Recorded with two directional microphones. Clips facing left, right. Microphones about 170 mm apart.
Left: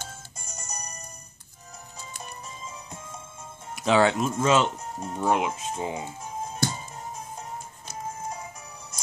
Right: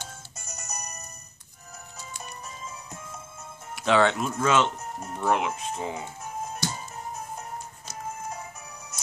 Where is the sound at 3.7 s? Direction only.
5° left (ahead or behind).